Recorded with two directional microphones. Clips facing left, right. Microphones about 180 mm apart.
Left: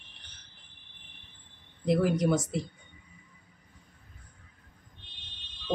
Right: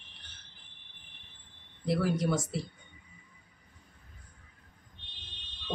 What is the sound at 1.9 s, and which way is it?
Speech, 20° left (ahead or behind).